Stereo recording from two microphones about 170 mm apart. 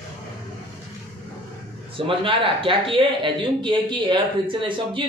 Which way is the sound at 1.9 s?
30° right (ahead or behind).